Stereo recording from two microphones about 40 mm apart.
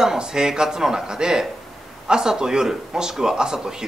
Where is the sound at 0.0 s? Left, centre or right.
Centre.